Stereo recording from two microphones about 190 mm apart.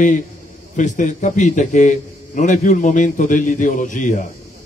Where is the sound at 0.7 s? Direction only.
40° left (ahead or behind).